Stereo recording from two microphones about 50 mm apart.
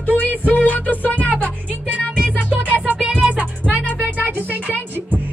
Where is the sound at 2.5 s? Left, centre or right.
Right.